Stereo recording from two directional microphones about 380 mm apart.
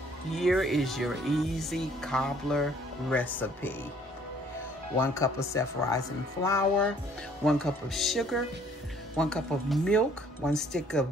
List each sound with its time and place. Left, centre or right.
0.4 s speech: centre
4.9 s speech: centre